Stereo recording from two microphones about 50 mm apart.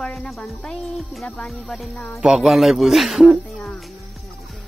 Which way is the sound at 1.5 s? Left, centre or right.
Centre.